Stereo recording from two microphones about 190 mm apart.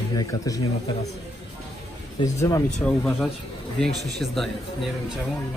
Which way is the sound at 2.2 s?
20° left (ahead or behind).